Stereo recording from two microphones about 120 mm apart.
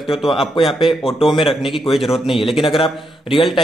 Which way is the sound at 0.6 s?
45° left (ahead or behind).